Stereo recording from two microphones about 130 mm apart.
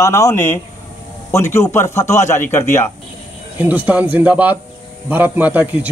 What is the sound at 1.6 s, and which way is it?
Speech, 20° left (ahead or behind).